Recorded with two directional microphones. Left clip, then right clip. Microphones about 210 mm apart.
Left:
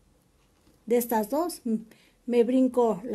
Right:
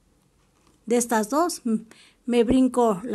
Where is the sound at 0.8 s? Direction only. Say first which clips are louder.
Right 2 dB; 20° right (ahead or behind).